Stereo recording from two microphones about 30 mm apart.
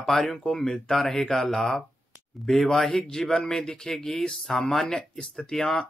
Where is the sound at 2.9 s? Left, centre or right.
Left.